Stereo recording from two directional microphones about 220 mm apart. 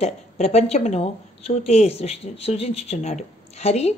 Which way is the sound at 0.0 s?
30° left (ahead or behind).